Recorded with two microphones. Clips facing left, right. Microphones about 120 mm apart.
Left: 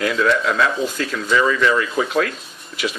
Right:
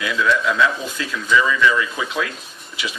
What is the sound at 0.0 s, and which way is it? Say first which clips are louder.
Speech: left 2 dB; 45° left (ahead or behind).